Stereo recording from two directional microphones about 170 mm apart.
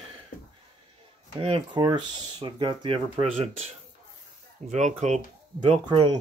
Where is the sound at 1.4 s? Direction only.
30° right (ahead or behind); by 5.2 s 45° right (ahead or behind).